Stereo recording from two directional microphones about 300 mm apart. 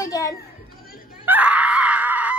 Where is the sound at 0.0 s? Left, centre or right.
Centre.